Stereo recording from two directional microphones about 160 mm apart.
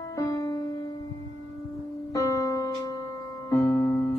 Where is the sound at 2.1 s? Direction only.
20° left (ahead or behind).